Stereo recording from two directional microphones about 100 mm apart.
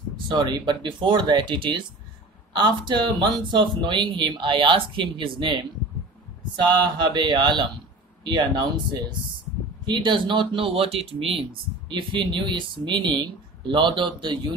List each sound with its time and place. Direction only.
0.3 s speech: 50° right (ahead or behind)
9.8 s speech: 50° right (ahead or behind); by 11.4 s 70° right (ahead or behind)
11.9 s speech: 55° right (ahead or behind)